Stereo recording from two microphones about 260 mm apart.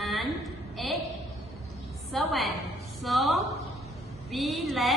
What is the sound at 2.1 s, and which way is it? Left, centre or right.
A woman's voice, centre.